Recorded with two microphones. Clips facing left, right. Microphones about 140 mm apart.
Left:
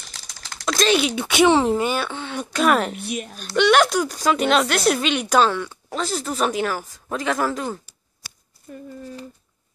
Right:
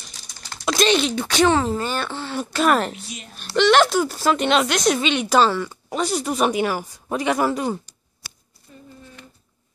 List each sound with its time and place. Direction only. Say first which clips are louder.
0.5 s speech: right 1 dB; 5° right (ahead or behind); by 2.0 s 15° left (ahead or behind)
2.0 s speech: right 1 dB; 5° right (ahead or behind)
3.0 s a woman's voice: left 9 dB; 60° left (ahead or behind)
3.3 s speech: right 1 dB; centre (ahead or behind)
8.7 s speech: left 8 dB; 50° left (ahead or behind)